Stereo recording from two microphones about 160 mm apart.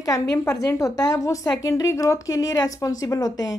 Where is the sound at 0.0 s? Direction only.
20° left (ahead or behind).